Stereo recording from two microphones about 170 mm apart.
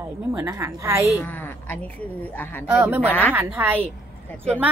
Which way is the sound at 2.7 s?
10° right (ahead or behind).